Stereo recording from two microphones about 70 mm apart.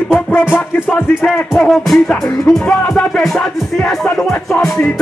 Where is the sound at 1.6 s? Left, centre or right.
Centre.